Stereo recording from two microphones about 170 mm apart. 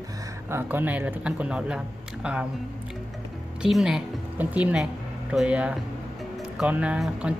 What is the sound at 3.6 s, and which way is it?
A woman's voice, 5° right (ahead or behind).